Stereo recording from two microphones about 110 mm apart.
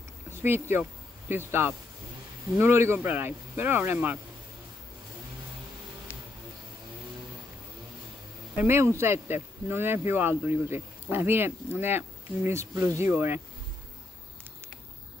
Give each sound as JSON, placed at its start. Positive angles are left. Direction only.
{"t": 0.5, "sound": "speech", "side_deg": -20}
{"t": 8.5, "sound": "speech", "side_deg": -20}